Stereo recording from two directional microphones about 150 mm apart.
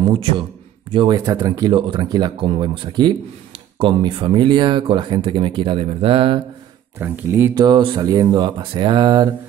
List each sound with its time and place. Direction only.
0.0 s a man's voice: 35° right (ahead or behind)
7.0 s speech: 15° right (ahead or behind)
7.5 s speech: 30° right (ahead or behind)